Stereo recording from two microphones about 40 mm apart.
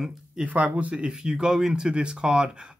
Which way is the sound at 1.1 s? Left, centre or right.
Centre.